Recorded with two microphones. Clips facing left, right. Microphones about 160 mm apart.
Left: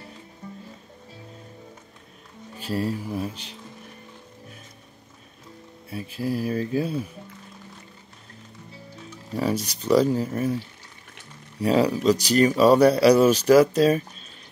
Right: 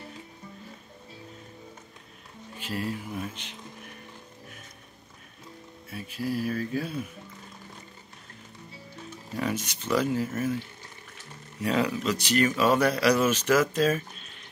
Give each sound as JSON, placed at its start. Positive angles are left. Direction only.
{"t": 2.6, "sound": "speech", "side_deg": 35}
{"t": 5.9, "sound": "speech", "side_deg": 30}
{"t": 9.4, "sound": "speech", "side_deg": 35}
{"t": 11.6, "sound": "speech", "side_deg": 35}